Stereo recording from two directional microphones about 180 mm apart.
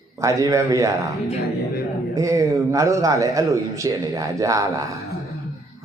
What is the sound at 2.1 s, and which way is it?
A man's voice, 15° right (ahead or behind).